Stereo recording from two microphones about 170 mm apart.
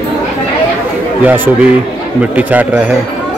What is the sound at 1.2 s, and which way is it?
Speech, 10° right (ahead or behind).